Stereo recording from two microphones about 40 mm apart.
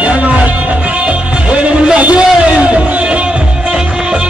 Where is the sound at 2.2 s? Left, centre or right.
Right.